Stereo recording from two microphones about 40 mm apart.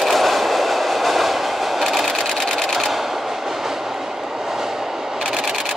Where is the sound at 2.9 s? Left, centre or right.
Centre.